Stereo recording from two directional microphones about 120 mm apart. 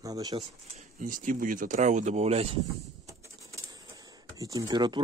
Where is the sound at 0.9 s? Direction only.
90° right; by 2.4 s 65° right (ahead or behind).